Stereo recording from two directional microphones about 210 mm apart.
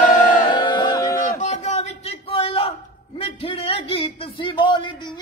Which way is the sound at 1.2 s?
35° left (ahead or behind).